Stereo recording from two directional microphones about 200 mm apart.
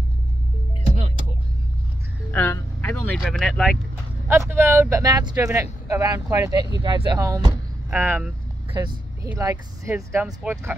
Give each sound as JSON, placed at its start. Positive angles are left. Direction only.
{"t": 2.3, "sound": "speech", "side_deg": 10}
{"t": 4.3, "sound": "speech", "side_deg": -10}
{"t": 8.7, "sound": "speech", "side_deg": -20}